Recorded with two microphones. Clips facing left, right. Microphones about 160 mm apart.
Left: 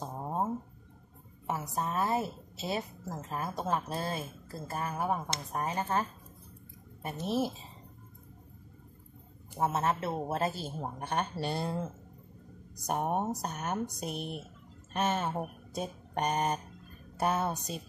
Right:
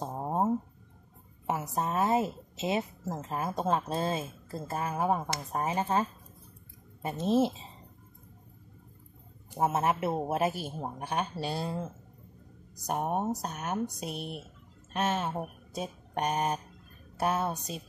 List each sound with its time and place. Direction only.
0.0 s a sound: 25° right (ahead or behind)
1.8 s a woman's voice: 25° right (ahead or behind)
9.6 s speech: 20° right (ahead or behind); by 17.8 s centre (ahead or behind)